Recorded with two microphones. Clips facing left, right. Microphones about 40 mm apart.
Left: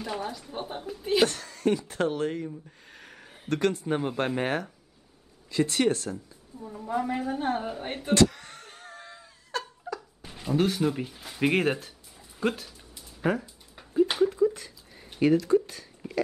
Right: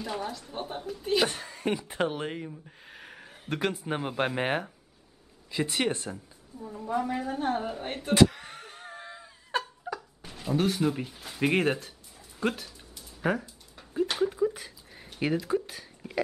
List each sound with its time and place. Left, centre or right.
0.0 s speech: centre
1.2 s a man's voice: centre
6.6 s speech: centre
8.1 s laughter: centre
9.9 s a sound: centre
15.1 s speech: centre